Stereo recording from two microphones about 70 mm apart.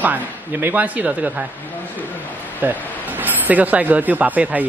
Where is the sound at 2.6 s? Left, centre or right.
Right.